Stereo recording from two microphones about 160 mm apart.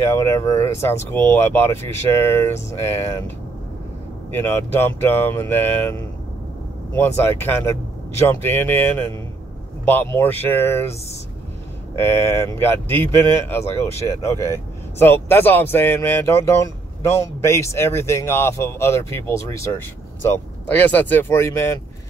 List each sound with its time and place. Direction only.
0.0 s speech: 15° left (ahead or behind)
9.8 s speech: 15° left (ahead or behind)